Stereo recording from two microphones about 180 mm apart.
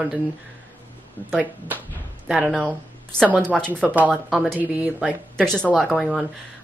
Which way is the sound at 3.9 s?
10° right (ahead or behind).